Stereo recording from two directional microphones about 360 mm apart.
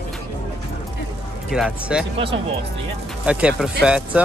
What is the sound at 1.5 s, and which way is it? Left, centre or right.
Speech, centre.